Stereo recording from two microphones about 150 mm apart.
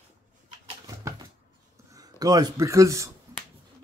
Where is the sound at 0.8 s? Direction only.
25° right (ahead or behind).